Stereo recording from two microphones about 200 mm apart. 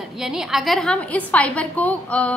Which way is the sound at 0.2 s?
Centre (ahead or behind).